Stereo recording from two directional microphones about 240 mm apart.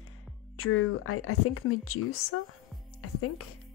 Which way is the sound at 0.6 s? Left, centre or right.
Left.